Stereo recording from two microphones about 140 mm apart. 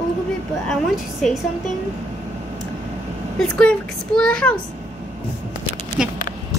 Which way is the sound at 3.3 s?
5° left (ahead or behind).